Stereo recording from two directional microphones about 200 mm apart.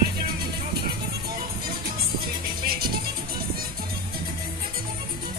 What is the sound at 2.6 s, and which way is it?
Music, 50° right (ahead or behind).